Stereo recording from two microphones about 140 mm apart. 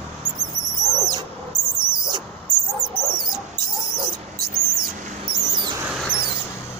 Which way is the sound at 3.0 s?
5° right (ahead or behind).